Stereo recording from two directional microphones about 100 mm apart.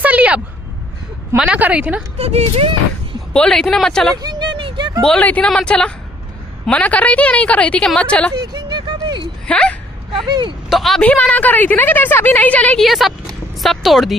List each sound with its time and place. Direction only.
0.0 s a sound: 15° right (ahead or behind)
1.3 s a woman's voice: 15° right (ahead or behind)
2.1 s speech: 90° right
3.3 s speech: 5° left (ahead or behind)
4.2 s a sound: 45° right (ahead or behind)
5.0 s a woman's voice: 10° left (ahead or behind)
8.4 s a sound: 45° right (ahead or behind)
9.5 s a woman's voice: 10° left (ahead or behind)
10.1 s speech: 50° right (ahead or behind)
10.7 s speech: centre (ahead or behind)
11.0 s a woman's voice: 15° left (ahead or behind)
12.8 s speech: centre (ahead or behind)